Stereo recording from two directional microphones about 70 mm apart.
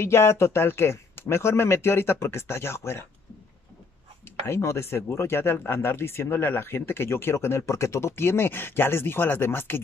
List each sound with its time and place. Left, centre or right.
0.0 s speech: left
4.5 s speech: left